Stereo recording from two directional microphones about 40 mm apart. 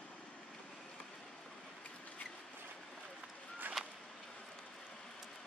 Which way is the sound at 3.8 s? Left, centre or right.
Centre.